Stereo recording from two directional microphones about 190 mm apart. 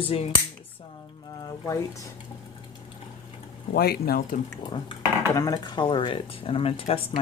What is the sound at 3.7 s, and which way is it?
Speech, 55° left (ahead or behind).